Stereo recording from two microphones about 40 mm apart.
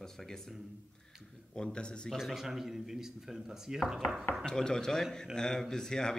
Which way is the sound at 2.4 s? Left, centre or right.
Centre.